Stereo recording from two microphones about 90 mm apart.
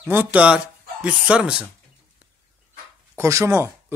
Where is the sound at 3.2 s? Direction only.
35° right (ahead or behind).